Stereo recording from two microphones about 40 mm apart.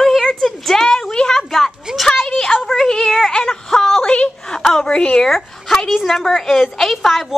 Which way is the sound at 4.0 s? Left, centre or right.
Left.